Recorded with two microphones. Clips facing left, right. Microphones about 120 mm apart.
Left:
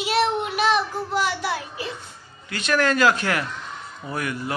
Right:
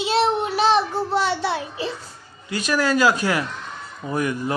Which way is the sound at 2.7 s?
10° right (ahead or behind).